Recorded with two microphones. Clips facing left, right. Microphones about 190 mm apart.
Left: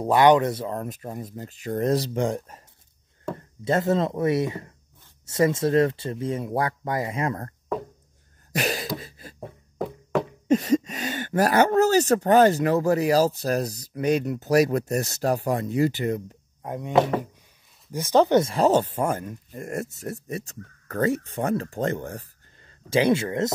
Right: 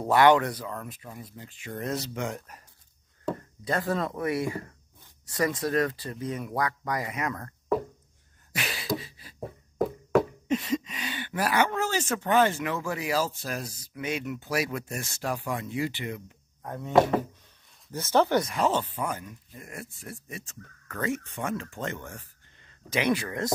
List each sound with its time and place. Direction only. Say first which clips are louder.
0.0 s speech: left 3 dB; 20° left (ahead or behind)
8.5 s a sound: left 9 dB; 40° left (ahead or behind)
9.0 s beatboxing: left 6 dB; 45° left (ahead or behind)
9.4 s a sound: right 3 dB; centre (ahead or behind)
10.5 s speech: left 8 dB; 45° left (ahead or behind)
16.6 s speech: left 5 dB; 15° left (ahead or behind)
17.9 s speech: left 5 dB; 15° left (ahead or behind)